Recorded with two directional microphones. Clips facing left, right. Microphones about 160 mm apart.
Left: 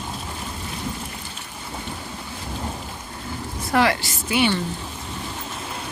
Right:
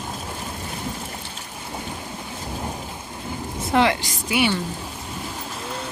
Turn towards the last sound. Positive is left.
turn(degrees=-10)  # may be behind; listen again after turning